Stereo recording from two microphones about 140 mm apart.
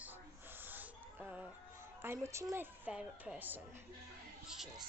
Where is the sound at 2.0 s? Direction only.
20° right (ahead or behind).